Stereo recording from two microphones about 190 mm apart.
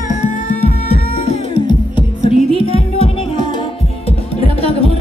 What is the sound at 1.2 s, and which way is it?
Music, 25° left (ahead or behind).